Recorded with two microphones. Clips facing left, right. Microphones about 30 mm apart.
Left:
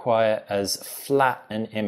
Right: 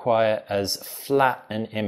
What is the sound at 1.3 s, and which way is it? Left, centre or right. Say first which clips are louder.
Speech: even; centre.